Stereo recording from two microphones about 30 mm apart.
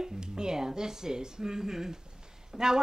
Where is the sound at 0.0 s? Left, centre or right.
Right.